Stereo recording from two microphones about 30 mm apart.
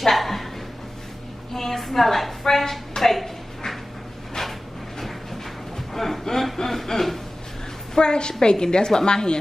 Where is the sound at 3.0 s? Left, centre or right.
Centre.